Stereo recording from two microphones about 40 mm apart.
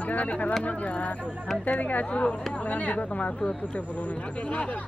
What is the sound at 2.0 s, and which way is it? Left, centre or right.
Speech, left.